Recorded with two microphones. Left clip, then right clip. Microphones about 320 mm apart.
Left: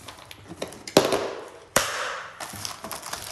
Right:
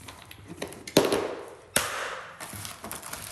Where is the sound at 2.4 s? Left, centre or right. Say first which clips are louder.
Left 5 dB; centre.